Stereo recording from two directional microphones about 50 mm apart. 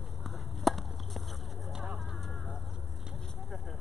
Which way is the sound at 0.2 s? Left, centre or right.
Centre.